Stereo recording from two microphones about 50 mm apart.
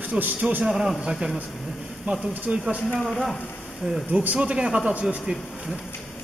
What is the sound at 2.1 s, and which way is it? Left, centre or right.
Speech, right.